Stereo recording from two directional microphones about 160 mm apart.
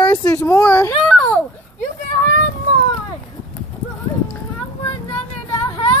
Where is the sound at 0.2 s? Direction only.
20° left (ahead or behind).